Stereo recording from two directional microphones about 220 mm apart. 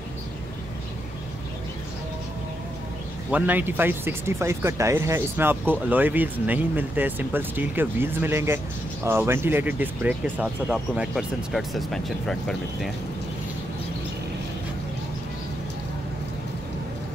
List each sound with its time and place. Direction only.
3.3 s speech: 5° right (ahead or behind)